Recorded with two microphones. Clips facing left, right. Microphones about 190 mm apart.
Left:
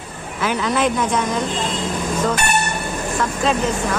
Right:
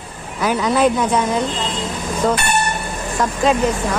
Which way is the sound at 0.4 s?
40° right (ahead or behind).